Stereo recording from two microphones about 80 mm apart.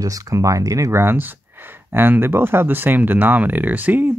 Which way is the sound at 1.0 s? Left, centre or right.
Right.